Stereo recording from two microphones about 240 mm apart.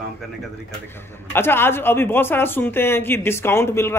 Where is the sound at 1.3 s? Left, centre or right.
Centre.